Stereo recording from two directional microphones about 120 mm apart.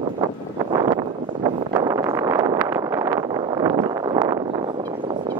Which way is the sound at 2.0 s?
25° right (ahead or behind).